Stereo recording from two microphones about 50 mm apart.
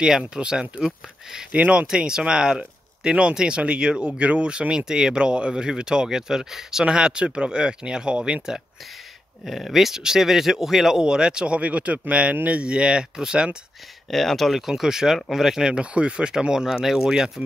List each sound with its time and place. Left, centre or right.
0.3 s speech: centre
9.5 s speech: centre
14.1 s speech: centre
14.7 s speech: centre